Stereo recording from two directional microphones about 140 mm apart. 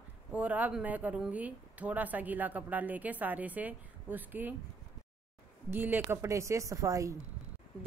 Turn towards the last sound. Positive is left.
turn(degrees=-25)  # may be behind; listen again after turning